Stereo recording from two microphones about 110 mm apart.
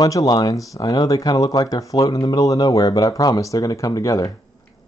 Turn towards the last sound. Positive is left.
turn(degrees=30)  # may be behind; listen again after turning